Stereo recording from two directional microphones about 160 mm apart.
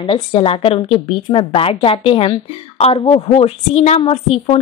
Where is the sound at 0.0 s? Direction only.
35° left (ahead or behind).